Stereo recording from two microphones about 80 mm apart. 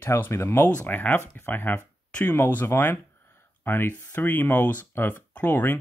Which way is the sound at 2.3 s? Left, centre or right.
Left.